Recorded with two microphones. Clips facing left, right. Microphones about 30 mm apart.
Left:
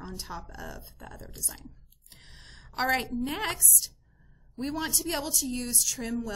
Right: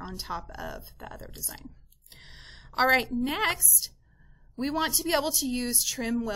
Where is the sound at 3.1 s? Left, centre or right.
Centre.